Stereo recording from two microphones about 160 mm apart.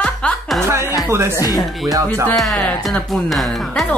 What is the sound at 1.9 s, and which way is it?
Music, 20° right (ahead or behind).